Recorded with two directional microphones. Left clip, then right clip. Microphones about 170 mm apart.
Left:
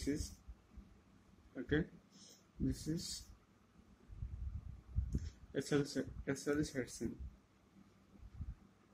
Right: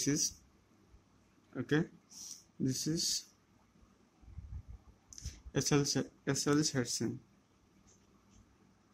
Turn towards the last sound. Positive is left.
turn(degrees=-45)  # may be behind; listen again after turning